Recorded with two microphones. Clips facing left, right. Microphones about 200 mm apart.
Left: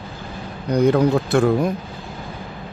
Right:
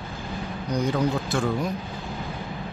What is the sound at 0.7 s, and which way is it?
Speech, 60° left (ahead or behind).